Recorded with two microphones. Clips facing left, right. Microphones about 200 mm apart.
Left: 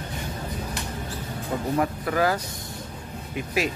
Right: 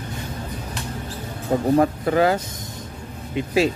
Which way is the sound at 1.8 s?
25° right (ahead or behind).